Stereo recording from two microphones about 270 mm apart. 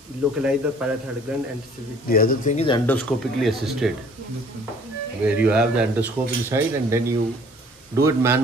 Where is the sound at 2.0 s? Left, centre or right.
Left.